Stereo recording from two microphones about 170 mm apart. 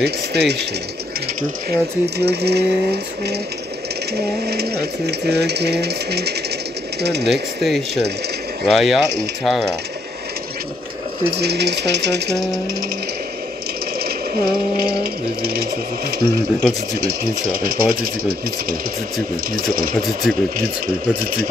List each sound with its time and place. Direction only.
0.0 s speech: 75° right (ahead or behind)
1.7 s speech: 75° right (ahead or behind)
4.5 s speech: 70° right (ahead or behind)
7.6 s speech: centre (ahead or behind)
11.2 s speech: 75° right (ahead or behind)
13.9 s speech: 65° right (ahead or behind)
19.5 s speech: 60° right (ahead or behind)